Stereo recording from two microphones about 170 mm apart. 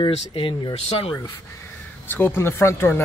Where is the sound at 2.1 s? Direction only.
15° left (ahead or behind).